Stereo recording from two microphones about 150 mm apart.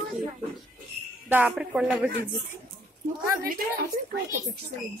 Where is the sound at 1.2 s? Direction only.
10° right (ahead or behind).